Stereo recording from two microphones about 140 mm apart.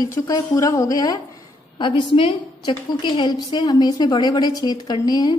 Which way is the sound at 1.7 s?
35° left (ahead or behind).